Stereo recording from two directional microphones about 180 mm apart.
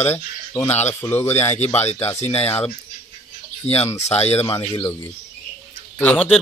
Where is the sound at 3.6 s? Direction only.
35° left (ahead or behind).